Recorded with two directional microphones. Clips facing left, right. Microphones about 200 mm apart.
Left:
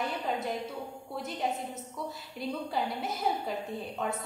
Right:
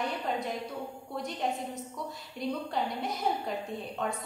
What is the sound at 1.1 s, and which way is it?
A woman's voice, 5° left (ahead or behind).